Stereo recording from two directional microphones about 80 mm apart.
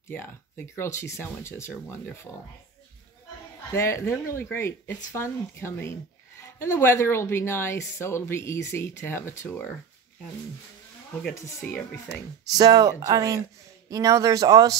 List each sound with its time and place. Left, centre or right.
0.1 s speech: left
3.7 s speech: left
11.6 s speech: centre
12.4 s speech: right